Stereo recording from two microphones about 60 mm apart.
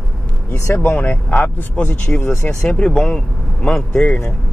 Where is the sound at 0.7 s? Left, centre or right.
Left.